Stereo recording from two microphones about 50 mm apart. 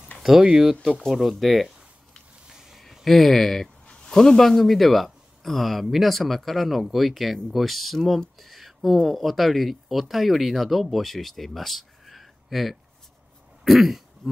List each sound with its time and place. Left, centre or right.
0.4 s speech: centre
2.5 s a sound: centre
3.8 s speech: centre
8.4 s a sound: centre
9.0 s speech: centre
13.7 s throat clearing: centre